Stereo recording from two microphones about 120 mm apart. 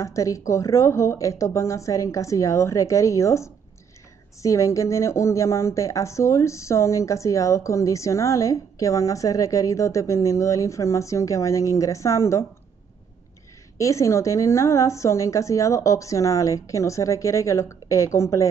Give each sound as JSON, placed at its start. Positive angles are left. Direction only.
{"t": 0.0, "sound": "speech", "side_deg": 25}
{"t": 13.7, "sound": "speech", "side_deg": 25}